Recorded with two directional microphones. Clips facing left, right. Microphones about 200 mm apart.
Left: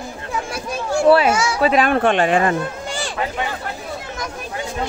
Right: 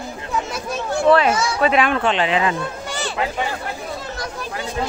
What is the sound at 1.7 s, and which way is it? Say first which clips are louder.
Speech: left 2 dB; 45° left (ahead or behind).